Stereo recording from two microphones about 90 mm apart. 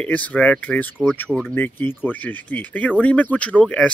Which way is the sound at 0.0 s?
15° left (ahead or behind).